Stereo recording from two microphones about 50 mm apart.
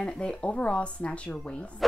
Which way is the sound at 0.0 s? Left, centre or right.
Left.